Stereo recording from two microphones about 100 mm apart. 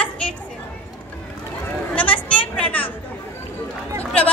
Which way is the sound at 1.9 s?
15° left (ahead or behind).